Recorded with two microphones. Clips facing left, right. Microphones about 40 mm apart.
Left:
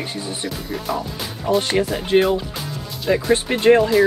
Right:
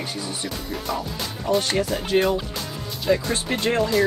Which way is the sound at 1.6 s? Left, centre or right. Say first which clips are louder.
Left 4 dB; left.